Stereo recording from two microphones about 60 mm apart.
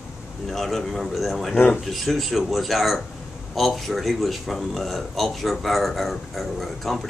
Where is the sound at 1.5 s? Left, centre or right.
Left.